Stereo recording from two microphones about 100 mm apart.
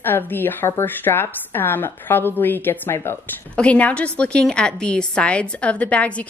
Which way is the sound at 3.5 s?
10° left (ahead or behind).